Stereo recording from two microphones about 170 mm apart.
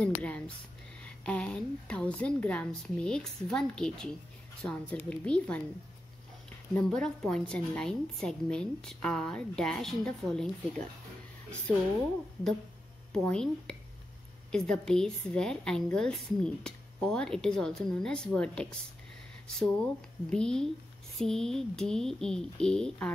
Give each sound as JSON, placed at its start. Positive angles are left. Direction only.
{"t": 0.0, "sound": "a woman's voice", "side_deg": 5}
{"t": 6.7, "sound": "a woman's voice", "side_deg": 5}
{"t": 13.1, "sound": "a woman's voice", "side_deg": 5}